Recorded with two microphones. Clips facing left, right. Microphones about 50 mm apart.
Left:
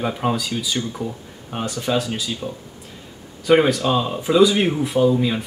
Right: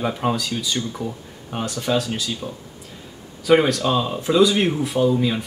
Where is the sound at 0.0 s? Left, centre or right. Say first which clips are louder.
Even; centre.